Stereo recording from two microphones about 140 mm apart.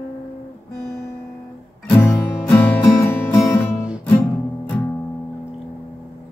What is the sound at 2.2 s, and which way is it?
Music, 15° left (ahead or behind).